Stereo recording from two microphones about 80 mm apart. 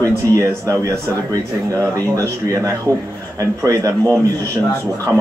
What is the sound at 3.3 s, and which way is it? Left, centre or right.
Speech, right.